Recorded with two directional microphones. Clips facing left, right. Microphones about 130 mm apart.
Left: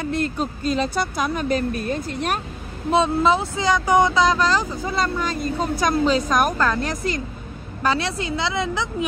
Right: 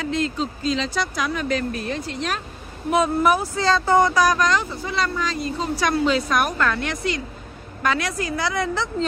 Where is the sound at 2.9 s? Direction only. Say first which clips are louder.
Left 1 dB; 25° left (ahead or behind).